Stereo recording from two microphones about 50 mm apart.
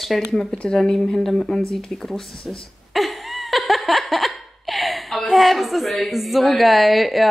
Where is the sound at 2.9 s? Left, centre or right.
Centre.